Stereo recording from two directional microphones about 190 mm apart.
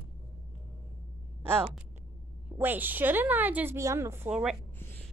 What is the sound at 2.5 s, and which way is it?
A woman's voice, 10° right (ahead or behind).